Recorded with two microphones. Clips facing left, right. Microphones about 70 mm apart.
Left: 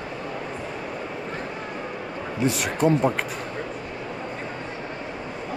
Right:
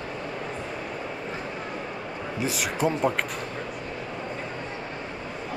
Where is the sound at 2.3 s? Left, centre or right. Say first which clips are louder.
Left 4 dB; centre.